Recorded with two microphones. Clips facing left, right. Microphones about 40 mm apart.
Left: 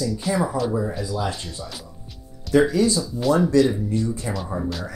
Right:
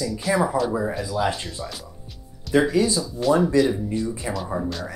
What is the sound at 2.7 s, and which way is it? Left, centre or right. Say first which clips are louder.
Speech: left 1 dB; centre.